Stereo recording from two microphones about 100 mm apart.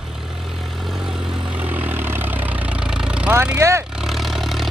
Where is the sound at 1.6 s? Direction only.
15° right (ahead or behind).